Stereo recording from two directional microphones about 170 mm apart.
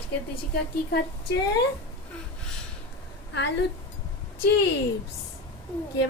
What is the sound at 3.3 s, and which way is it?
Speech, 90° left.